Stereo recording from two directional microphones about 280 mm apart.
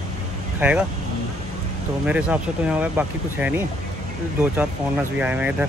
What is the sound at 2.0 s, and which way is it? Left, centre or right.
Speech, centre.